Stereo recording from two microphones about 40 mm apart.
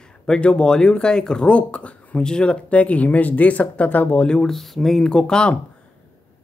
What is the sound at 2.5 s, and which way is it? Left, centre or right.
Speech, left.